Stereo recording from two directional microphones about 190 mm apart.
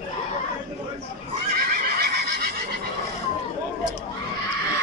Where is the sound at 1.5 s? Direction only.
50° right (ahead or behind).